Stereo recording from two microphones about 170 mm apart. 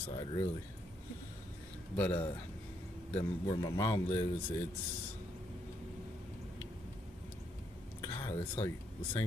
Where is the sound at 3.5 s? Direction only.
25° left (ahead or behind).